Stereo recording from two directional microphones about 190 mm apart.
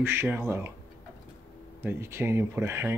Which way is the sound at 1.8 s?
15° right (ahead or behind).